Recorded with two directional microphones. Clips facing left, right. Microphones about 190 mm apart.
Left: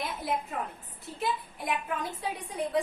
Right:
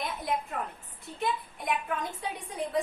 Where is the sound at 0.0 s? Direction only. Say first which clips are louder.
Even; 5° left (ahead or behind).